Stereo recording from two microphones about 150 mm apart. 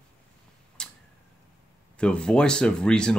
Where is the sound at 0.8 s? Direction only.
5° left (ahead or behind).